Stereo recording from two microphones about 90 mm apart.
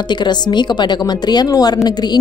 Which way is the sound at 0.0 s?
55° left (ahead or behind).